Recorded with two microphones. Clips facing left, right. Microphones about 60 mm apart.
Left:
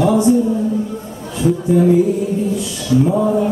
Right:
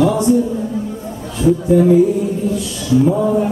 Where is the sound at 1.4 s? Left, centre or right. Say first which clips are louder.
Right 2 dB; centre.